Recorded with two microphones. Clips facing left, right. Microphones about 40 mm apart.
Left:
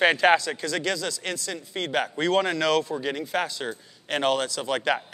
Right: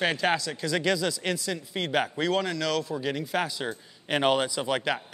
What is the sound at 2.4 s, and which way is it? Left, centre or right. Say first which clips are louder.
Speech: left 5 dB; left.